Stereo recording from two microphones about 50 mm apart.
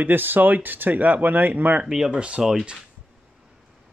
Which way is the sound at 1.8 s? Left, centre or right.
Centre.